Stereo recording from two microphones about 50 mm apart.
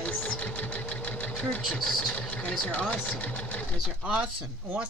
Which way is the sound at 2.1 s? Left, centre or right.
Left.